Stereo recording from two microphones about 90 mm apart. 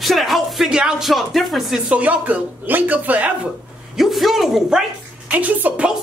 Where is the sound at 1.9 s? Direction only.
15° right (ahead or behind).